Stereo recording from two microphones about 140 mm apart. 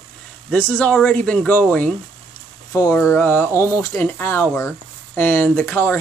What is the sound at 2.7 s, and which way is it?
Speech, 20° left (ahead or behind).